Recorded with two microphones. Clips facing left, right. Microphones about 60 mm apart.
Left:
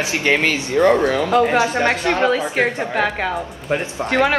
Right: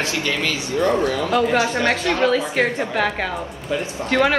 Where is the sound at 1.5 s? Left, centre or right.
Left; by 4.4 s centre.